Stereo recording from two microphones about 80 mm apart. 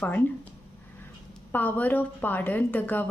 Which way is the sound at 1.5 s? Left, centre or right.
Left.